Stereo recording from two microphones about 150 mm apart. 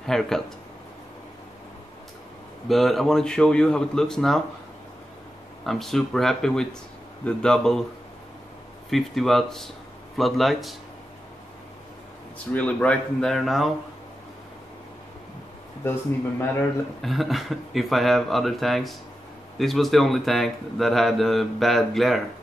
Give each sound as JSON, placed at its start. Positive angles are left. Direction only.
{"t": 0.0, "sound": "a man's voice", "side_deg": 5}
{"t": 2.7, "sound": "a man's voice", "side_deg": 0}
{"t": 5.6, "sound": "a man's voice", "side_deg": 0}
{"t": 8.9, "sound": "a man's voice", "side_deg": 0}
{"t": 12.5, "sound": "a man's voice", "side_deg": 10}
{"t": 15.8, "sound": "a man's voice", "side_deg": 15}
{"t": 17.0, "sound": "a man's voice", "side_deg": 0}